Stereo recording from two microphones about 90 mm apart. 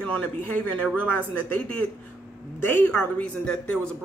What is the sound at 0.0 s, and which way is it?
Speech, 20° left (ahead or behind).